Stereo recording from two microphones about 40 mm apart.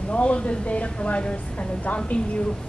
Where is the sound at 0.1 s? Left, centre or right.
Left.